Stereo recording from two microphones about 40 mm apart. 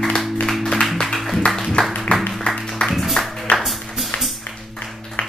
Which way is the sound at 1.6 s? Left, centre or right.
Centre.